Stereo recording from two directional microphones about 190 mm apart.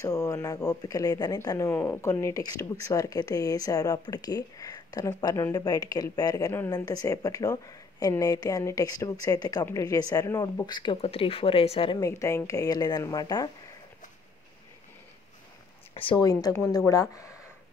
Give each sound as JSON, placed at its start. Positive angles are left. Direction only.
{"t": 0.0, "sound": "speech", "side_deg": 15}
{"t": 12.0, "sound": "speech", "side_deg": 15}
{"t": 15.9, "sound": "speech", "side_deg": 25}